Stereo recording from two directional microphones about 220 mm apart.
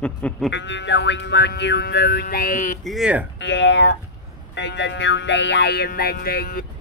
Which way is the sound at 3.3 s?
55° left (ahead or behind).